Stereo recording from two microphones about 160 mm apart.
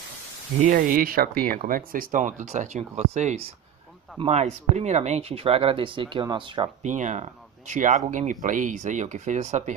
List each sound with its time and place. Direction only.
0.7 s speech: 60° right (ahead or behind); by 6.7 s 30° right (ahead or behind)
6.8 s speech: 50° right (ahead or behind)